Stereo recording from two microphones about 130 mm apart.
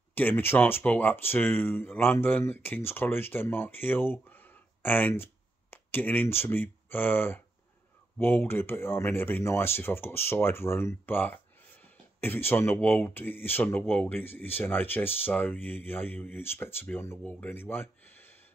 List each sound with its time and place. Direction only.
0.1 s speech: 15° left (ahead or behind)